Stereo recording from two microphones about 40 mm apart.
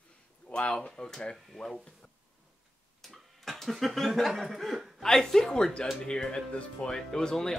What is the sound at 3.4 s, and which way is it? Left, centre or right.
Speech, centre.